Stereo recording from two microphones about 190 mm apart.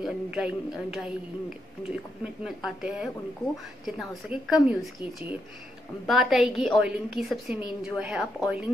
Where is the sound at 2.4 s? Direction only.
5° right (ahead or behind).